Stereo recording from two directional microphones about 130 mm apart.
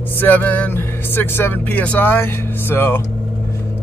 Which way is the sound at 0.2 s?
15° left (ahead or behind).